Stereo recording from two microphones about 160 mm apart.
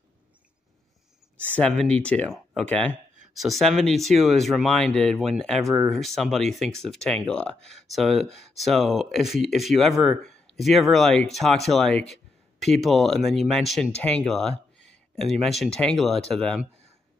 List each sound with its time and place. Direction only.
1.4 s speech: 5° left (ahead or behind)